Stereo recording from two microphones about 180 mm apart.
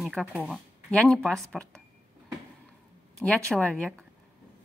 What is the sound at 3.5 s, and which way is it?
Speech, 5° left (ahead or behind).